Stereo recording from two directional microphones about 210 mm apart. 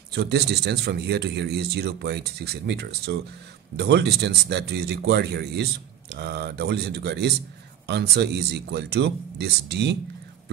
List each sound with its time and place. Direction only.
0.1 s speech: 50° right (ahead or behind)